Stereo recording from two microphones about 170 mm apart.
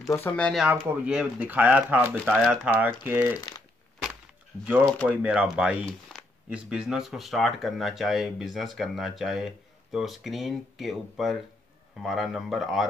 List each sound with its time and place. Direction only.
0.0 s speech: 15° left (ahead or behind)
0.5 s speech: centre (ahead or behind)
3.3 s speech: 25° left (ahead or behind)
4.8 s speech: 5° left (ahead or behind)
5.1 s speech: 5° right (ahead or behind)